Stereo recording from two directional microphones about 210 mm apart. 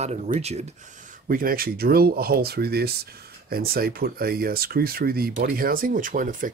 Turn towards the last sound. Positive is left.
turn(degrees=-40)  # may be behind; listen again after turning